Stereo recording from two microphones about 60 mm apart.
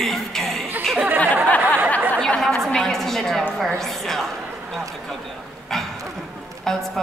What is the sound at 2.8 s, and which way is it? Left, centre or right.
A man's voice, centre.